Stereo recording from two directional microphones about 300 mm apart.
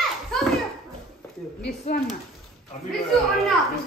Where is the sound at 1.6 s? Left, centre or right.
Left.